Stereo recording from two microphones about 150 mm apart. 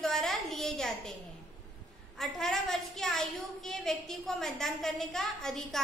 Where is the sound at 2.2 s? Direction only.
Centre (ahead or behind).